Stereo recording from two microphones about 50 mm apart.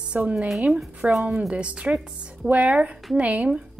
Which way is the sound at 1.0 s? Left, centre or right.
Centre.